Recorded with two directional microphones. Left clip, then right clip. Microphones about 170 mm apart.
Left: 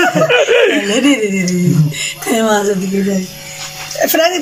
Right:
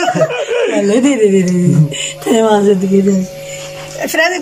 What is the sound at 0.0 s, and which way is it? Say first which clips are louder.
Chuckle: left 2 dB; centre (ahead or behind).